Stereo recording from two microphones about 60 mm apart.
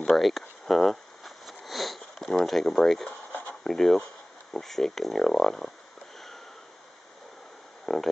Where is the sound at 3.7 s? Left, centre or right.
Centre.